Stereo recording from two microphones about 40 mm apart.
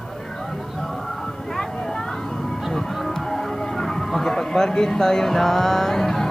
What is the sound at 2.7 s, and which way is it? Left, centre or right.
Music, centre.